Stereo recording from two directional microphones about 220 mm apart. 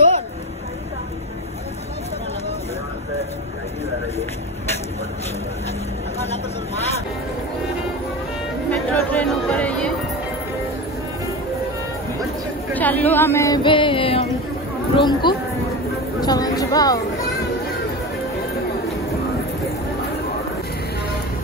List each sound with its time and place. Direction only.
8.6 s music: 5° left (ahead or behind)
12.7 s speech: 10° left (ahead or behind)